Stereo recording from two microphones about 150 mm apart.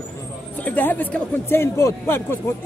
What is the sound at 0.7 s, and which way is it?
Speech, 10° left (ahead or behind).